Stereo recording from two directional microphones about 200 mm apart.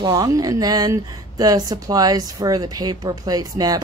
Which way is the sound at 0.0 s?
20° right (ahead or behind).